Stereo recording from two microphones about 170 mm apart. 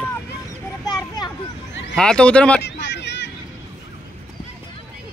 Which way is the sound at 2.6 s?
90° left.